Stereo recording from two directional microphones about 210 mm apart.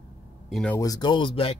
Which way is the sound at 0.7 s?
15° left (ahead or behind).